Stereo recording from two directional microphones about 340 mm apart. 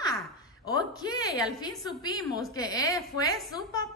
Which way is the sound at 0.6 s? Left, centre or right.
Centre.